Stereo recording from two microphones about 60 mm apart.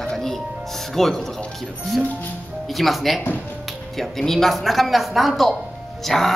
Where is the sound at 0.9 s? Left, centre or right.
Centre.